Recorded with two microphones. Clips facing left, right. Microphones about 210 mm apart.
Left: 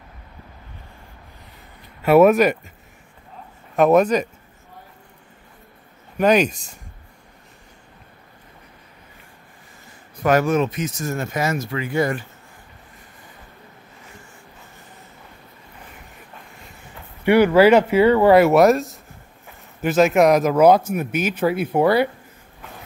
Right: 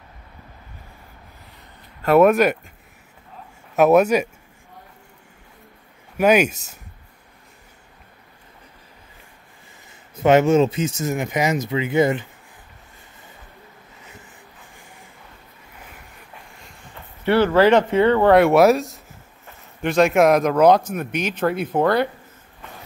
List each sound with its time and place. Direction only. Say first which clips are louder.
2.0 s speech: left 1 dB; 5° left (ahead or behind)
3.7 s speech: right 1 dB; 5° right (ahead or behind)
6.1 s speech: even; 10° right (ahead or behind)
10.1 s speech: right 3 dB; 25° right (ahead or behind)
17.2 s speech: left 2 dB; 15° left (ahead or behind)